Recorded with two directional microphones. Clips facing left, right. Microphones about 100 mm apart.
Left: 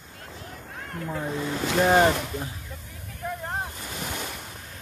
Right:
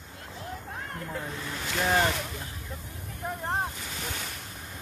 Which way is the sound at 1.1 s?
30° left (ahead or behind).